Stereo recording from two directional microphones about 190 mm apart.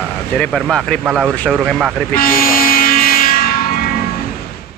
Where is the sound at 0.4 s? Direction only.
5° left (ahead or behind).